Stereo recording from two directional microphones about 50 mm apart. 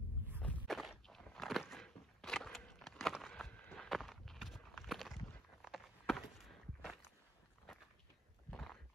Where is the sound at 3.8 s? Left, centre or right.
Centre.